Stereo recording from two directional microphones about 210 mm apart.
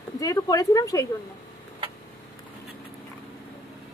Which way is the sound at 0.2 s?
15° left (ahead or behind).